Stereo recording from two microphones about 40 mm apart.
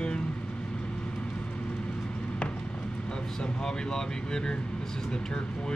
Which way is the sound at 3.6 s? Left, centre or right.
Centre.